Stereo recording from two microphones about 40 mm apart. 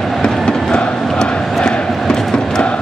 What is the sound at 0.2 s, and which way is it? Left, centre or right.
Crowd, centre.